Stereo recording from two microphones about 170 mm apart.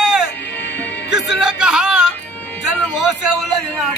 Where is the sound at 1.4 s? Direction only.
5° right (ahead or behind).